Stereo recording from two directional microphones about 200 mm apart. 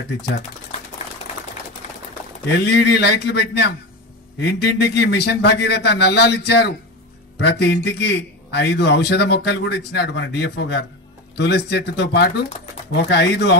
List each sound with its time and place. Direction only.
2.5 s a man's voice: 55° left (ahead or behind)